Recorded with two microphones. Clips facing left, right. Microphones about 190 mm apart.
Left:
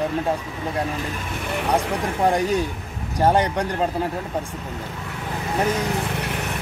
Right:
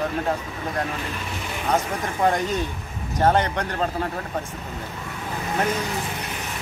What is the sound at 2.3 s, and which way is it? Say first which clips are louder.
Speech: left 3 dB; 10° left (ahead or behind).